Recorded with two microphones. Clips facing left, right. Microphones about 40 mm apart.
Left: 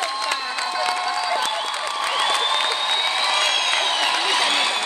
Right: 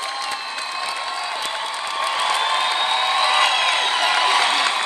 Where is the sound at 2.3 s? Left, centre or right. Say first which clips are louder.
Right 2 dB; right.